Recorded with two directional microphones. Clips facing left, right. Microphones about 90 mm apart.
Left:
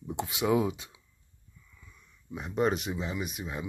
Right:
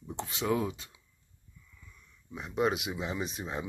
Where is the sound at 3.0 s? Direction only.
30° right (ahead or behind).